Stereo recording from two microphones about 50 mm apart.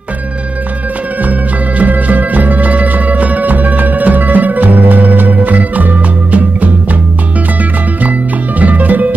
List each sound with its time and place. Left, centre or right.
1.8 s music: right
8.0 s music: right